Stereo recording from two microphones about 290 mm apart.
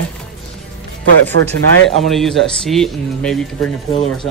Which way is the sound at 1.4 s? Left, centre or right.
Right.